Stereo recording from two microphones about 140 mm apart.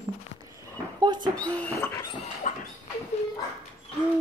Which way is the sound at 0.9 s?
30° right (ahead or behind).